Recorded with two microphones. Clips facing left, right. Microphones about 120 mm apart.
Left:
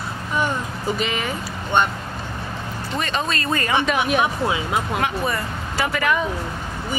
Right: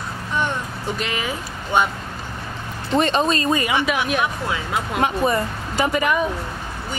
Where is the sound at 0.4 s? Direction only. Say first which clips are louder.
Left 1 dB; 5° left (ahead or behind).